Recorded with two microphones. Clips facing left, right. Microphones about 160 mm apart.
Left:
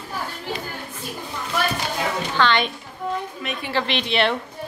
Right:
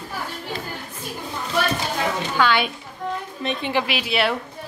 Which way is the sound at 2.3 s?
10° right (ahead or behind).